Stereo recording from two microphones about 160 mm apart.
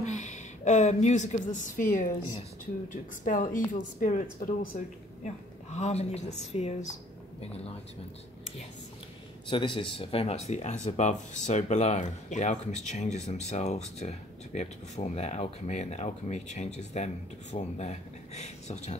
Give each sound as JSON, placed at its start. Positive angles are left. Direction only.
{"t": 0.0, "sound": "a woman's voice", "side_deg": 45}
{"t": 4.7, "sound": "speech", "side_deg": 50}
{"t": 9.5, "sound": "speech", "side_deg": 30}